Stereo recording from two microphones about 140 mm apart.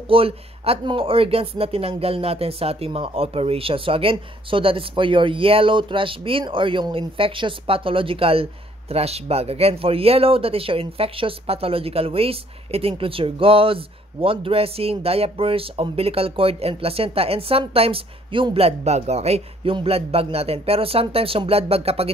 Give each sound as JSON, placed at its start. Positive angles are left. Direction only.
{"t": 0.1, "sound": "speech", "side_deg": -40}